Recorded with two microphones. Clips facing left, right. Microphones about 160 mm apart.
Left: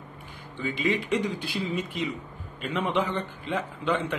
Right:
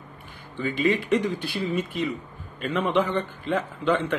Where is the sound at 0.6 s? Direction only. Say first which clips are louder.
Right 4 dB; 15° left (ahead or behind).